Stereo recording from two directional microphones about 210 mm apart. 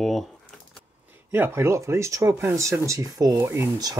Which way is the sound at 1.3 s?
10° right (ahead or behind).